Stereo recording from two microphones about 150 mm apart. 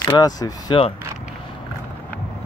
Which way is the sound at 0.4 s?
25° left (ahead or behind).